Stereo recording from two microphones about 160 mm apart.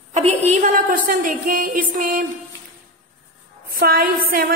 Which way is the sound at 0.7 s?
60° right (ahead or behind).